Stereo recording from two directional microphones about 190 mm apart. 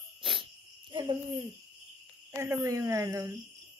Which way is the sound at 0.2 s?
25° right (ahead or behind).